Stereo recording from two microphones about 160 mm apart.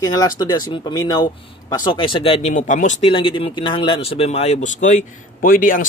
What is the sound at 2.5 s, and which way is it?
Speech, 50° left (ahead or behind).